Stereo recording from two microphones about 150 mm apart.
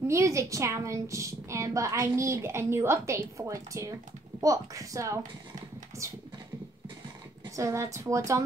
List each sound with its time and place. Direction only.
0.1 s a woman's voice: 20° right (ahead or behind)
7.5 s a woman's voice: 20° right (ahead or behind)